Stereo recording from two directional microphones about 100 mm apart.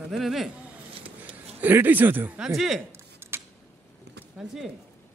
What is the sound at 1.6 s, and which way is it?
Speech, 20° right (ahead or behind).